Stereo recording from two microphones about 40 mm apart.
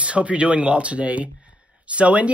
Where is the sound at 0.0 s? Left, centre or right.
Right.